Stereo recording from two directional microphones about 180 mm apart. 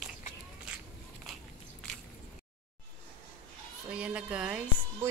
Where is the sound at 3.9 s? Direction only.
5° right (ahead or behind).